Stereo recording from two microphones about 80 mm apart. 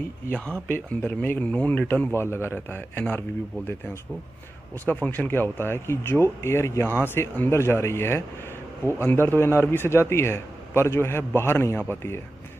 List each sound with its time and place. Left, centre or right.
0.7 s speech: left
2.1 s speech: left
4.8 s a man's voice: left